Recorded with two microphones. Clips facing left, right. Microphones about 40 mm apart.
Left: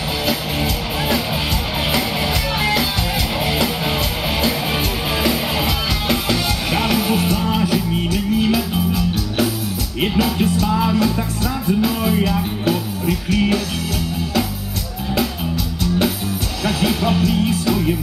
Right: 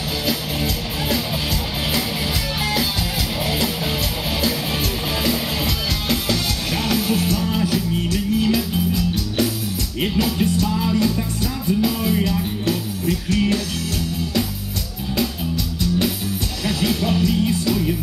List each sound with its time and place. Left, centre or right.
0.3 s music: centre
2.6 s music: centre
5.2 s music: centre
10.7 s music: left
11.6 s music: centre
16.6 s music: centre